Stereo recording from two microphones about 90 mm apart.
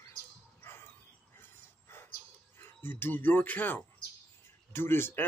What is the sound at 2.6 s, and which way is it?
Speech, 25° left (ahead or behind).